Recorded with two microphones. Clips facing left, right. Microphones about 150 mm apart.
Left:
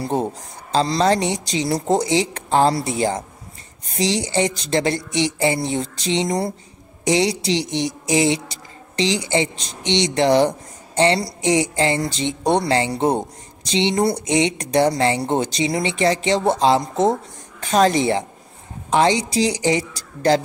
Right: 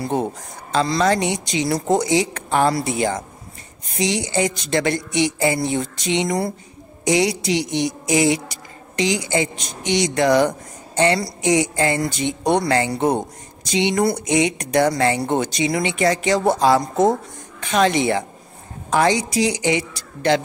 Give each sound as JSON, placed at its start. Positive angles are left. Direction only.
{"t": 0.0, "sound": "a woman's voice", "side_deg": 30}
{"t": 17.6, "sound": "a woman's voice", "side_deg": 35}